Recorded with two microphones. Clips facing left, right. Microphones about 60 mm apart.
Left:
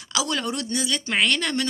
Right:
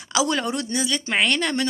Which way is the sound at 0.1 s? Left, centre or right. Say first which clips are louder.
Right 3 dB; centre.